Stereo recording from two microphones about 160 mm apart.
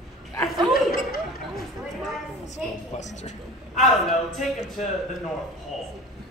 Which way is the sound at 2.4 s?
45° left (ahead or behind).